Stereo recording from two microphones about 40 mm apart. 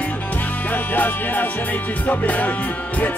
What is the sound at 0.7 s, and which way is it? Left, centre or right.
Music, left.